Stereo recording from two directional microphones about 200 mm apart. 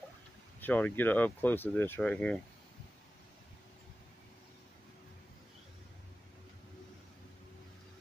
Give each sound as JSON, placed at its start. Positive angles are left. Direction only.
{"t": 0.6, "sound": "speech", "side_deg": 10}